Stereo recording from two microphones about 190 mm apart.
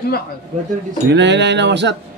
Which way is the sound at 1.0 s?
65° right (ahead or behind).